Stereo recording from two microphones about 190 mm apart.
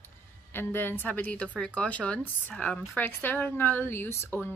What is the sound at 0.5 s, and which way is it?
Speech, 10° left (ahead or behind).